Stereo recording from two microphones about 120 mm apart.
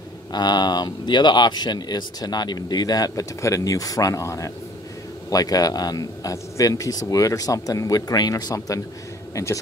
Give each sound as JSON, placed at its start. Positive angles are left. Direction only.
{"t": 0.3, "sound": "speech", "side_deg": 35}